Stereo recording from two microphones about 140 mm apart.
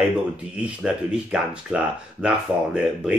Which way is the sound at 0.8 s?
5° right (ahead or behind).